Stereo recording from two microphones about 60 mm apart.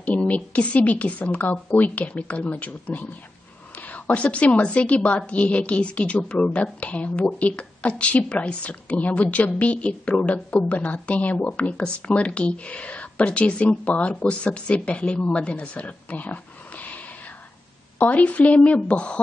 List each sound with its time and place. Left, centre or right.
0.0 s a woman's voice: left